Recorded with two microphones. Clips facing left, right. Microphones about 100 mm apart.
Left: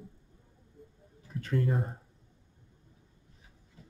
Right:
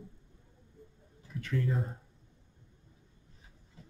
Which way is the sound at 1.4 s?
45° left (ahead or behind).